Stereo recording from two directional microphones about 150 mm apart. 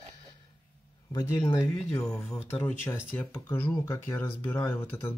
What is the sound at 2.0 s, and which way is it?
Speech, 5° left (ahead or behind).